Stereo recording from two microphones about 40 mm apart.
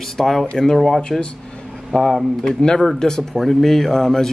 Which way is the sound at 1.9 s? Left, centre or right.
Left.